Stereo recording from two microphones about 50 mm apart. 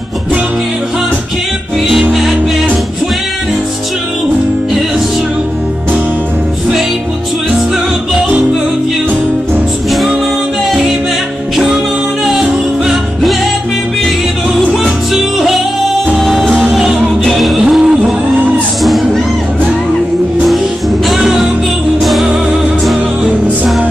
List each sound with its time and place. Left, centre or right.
1.9 s music: centre
9.8 s music: centre
12.3 s music: centre
16.2 s music: centre
17.6 s music: centre
18.8 s music: centre
21.2 s music: centre
23.2 s music: centre